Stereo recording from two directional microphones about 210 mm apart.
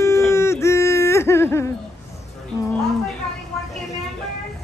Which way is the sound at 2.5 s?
15° left (ahead or behind).